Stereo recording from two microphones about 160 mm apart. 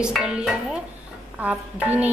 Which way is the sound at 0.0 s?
5° right (ahead or behind).